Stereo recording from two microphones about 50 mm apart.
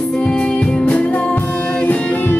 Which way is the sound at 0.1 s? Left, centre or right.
Centre.